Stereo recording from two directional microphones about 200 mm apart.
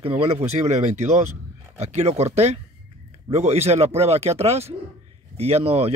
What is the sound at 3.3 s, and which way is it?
Speech, 30° right (ahead or behind).